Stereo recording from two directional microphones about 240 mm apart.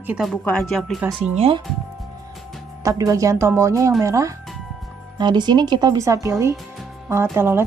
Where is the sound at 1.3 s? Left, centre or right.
Right.